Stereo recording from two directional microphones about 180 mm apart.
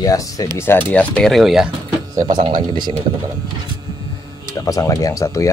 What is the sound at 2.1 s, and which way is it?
Speech, 25° right (ahead or behind).